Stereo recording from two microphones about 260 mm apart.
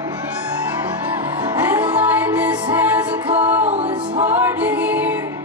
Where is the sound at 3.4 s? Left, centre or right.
Centre.